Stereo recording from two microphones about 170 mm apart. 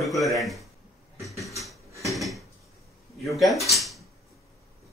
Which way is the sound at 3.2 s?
Centre (ahead or behind).